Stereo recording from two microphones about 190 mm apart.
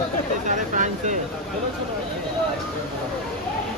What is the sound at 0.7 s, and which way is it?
Speech, 40° right (ahead or behind).